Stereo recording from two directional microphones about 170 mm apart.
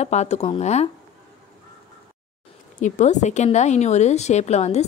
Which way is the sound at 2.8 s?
45° left (ahead or behind).